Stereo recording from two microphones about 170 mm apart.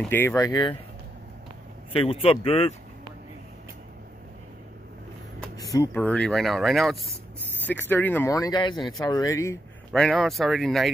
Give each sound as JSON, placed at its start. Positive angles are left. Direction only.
{"t": 0.0, "sound": "speech", "side_deg": 10}
{"t": 1.9, "sound": "speech", "side_deg": 30}
{"t": 5.6, "sound": "a sound", "side_deg": 20}
{"t": 5.9, "sound": "speech", "side_deg": 5}
{"t": 7.6, "sound": "speech", "side_deg": 10}
{"t": 9.9, "sound": "speech", "side_deg": 5}